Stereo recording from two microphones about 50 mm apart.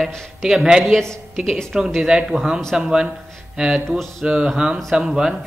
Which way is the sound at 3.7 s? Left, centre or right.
Centre.